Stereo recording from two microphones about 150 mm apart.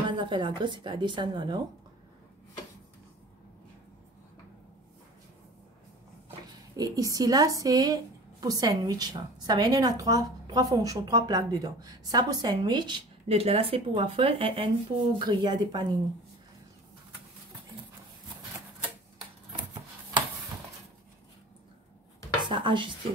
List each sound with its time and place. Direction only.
0.1 s speech: 30° right (ahead or behind)
6.8 s a woman's voice: 25° right (ahead or behind)
13.3 s speech: 40° right (ahead or behind)
22.5 s speech: 35° right (ahead or behind)